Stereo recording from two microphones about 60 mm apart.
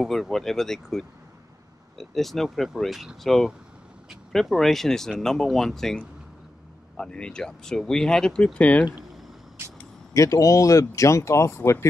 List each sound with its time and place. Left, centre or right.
0.0 s speech: centre
8.5 s speech: left
10.1 s speech: left